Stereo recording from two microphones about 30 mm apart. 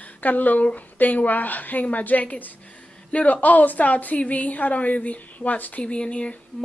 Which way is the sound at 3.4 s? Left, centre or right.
Left.